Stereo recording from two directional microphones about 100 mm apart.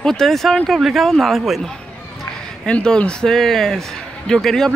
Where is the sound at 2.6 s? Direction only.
10° left (ahead or behind).